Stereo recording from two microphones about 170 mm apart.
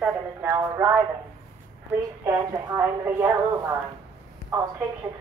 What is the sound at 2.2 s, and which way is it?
A woman's voice, 15° right (ahead or behind).